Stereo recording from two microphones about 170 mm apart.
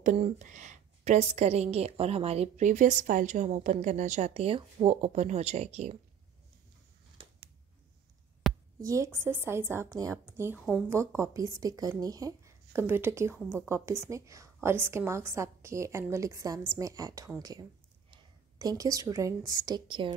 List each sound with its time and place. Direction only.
0.0 s a woman's voice: 45° right (ahead or behind)
8.4 s a sound: centre (ahead or behind)
8.8 s a woman's voice: 20° right (ahead or behind)